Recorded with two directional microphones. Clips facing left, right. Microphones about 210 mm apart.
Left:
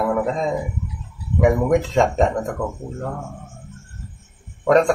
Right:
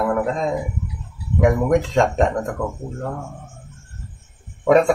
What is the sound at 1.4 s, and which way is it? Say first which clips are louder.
Speech: even; centre (ahead or behind).